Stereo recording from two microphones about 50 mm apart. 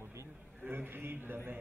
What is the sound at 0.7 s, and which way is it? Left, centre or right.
Speech, right.